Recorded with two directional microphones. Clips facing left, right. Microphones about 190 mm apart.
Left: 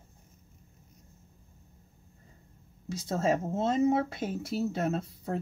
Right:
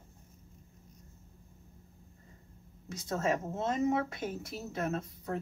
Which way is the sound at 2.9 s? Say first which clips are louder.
Left 4 dB; 30° left (ahead or behind).